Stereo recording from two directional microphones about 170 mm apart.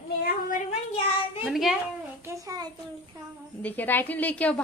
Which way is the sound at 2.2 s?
20° right (ahead or behind).